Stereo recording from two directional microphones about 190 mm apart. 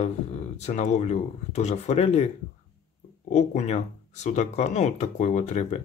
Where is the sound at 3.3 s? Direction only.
40° left (ahead or behind).